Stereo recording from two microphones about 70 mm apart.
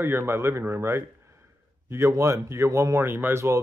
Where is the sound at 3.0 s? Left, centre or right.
Right.